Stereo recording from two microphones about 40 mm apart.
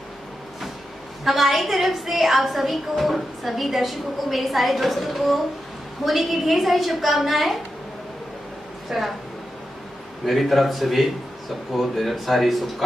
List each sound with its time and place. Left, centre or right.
1.2 s a woman's voice: centre
8.8 s a woman's voice: centre
10.2 s a woman's voice: centre